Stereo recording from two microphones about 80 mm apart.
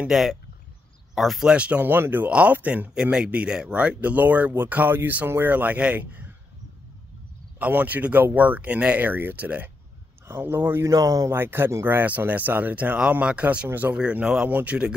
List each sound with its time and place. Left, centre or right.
0.1 s speech: centre
1.5 s speech: centre
7.5 s speech: right
11.2 s speech: right
13.9 s speech: centre